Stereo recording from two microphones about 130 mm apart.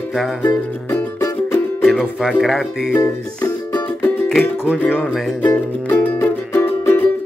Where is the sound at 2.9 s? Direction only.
15° left (ahead or behind).